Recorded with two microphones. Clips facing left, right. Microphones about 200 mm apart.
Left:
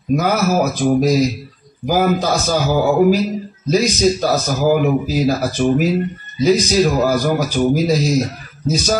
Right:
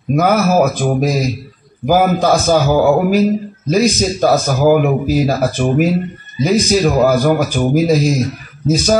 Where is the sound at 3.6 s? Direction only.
55° right (ahead or behind).